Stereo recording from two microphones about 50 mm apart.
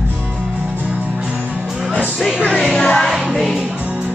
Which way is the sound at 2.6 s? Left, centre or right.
Centre.